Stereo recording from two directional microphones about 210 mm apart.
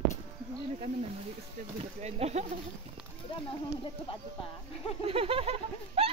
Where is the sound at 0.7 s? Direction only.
30° right (ahead or behind).